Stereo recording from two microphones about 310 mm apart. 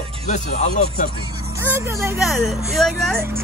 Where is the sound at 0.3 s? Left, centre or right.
Left.